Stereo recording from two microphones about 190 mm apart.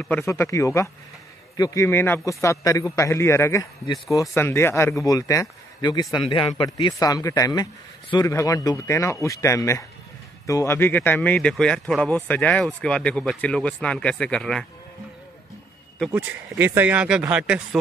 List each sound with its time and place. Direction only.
0.0 s a man's voice: 10° left (ahead or behind)
16.0 s speech: 10° right (ahead or behind)